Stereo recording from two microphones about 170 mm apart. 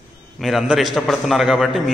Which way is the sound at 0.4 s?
Centre (ahead or behind).